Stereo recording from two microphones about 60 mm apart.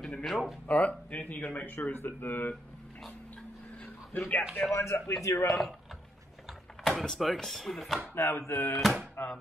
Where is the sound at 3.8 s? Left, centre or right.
Left.